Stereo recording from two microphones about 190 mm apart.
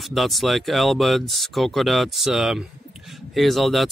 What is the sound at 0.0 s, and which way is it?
Speech, centre (ahead or behind).